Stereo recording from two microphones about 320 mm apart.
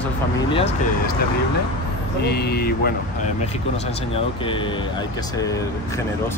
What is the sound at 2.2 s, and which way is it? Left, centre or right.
Speech, left.